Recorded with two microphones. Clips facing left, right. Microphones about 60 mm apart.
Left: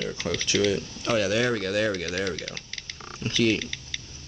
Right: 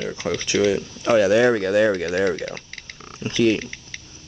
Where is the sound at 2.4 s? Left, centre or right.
Centre.